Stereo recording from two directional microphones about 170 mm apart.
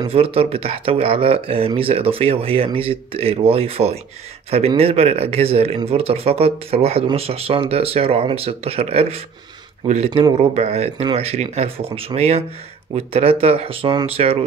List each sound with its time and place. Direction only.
0.0 s speech: 35° right (ahead or behind)